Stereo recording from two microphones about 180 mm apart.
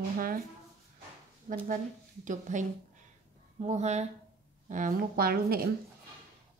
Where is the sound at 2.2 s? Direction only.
45° right (ahead or behind).